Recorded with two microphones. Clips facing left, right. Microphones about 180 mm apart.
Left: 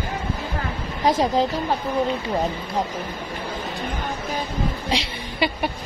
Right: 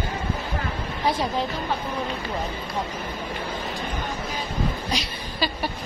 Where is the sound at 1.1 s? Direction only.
45° left (ahead or behind).